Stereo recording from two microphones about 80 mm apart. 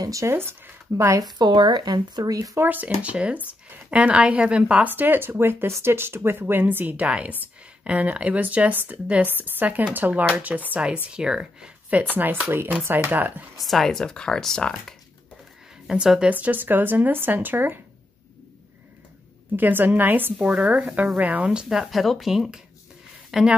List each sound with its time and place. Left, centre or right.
0.0 s speech: right
0.3 s speech: right
1.4 s speech: right
2.6 s speech: right
4.8 s speech: right
12.0 s speech: right
13.6 s speech: centre
15.9 s speech: centre; by 17.7 s right
19.5 s speech: right; by 23.5 s centre